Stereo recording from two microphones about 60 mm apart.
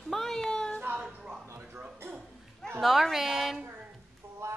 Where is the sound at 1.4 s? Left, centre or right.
Right.